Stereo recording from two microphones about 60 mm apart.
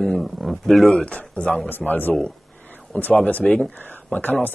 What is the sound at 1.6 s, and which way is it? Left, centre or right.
Speech, left.